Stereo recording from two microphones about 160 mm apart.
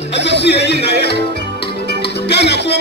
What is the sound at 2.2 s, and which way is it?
Music, 90° left.